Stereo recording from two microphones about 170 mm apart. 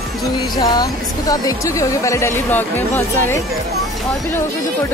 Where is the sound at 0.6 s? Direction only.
20° left (ahead or behind).